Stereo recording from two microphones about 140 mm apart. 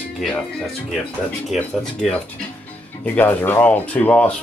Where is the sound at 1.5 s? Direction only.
5° left (ahead or behind).